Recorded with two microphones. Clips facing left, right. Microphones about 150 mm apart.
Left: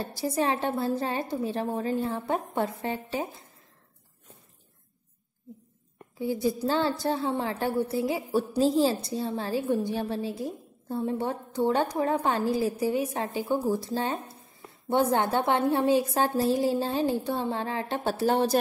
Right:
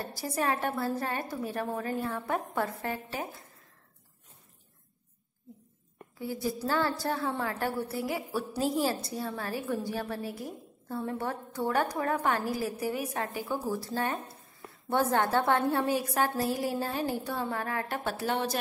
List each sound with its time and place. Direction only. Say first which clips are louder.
0.0 s a woman's voice: left 4 dB; 25° left (ahead or behind)
6.1 s a woman's voice: left 6 dB; 20° left (ahead or behind)